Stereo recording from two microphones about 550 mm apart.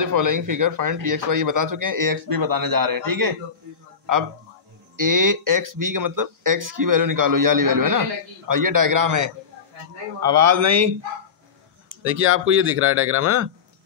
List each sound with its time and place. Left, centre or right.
0.0 s speech: right
4.0 s a sound: right
4.9 s speech: right
11.9 s speech: right